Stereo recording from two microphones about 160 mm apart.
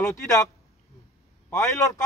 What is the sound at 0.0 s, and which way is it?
Speech, 20° left (ahead or behind).